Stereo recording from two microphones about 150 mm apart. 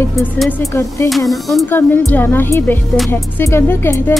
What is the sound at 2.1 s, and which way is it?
Music, 15° left (ahead or behind).